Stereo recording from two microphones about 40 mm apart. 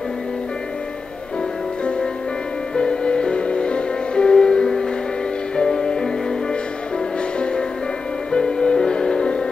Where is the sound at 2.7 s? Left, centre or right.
Left.